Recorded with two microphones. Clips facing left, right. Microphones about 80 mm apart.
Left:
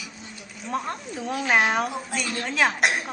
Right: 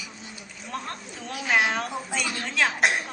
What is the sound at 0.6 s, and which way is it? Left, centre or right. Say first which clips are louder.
A woman's voice: left 6 dB; centre.